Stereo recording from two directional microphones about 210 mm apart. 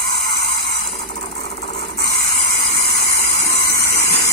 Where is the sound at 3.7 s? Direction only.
50° left (ahead or behind).